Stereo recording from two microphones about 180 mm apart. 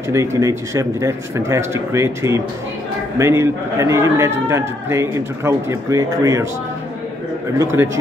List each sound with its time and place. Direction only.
0.1 s a man's voice: 15° right (ahead or behind)
7.5 s a man's voice: 15° right (ahead or behind)